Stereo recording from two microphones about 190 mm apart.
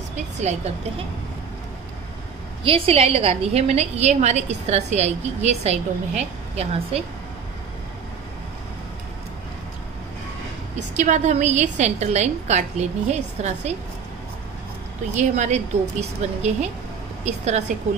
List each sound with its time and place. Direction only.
0.4 s a woman's voice: 35° right (ahead or behind)
2.6 s a woman's voice: 30° right (ahead or behind)
11.0 s a woman's voice: 40° right (ahead or behind)
15.1 s a woman's voice: 35° right (ahead or behind)